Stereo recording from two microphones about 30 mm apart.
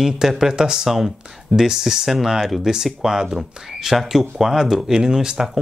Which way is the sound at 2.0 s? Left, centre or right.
Centre.